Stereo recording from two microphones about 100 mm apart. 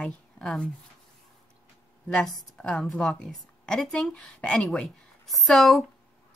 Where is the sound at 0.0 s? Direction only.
5° left (ahead or behind).